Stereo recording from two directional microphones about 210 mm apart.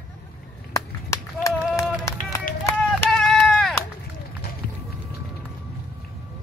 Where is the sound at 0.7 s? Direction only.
15° left (ahead or behind).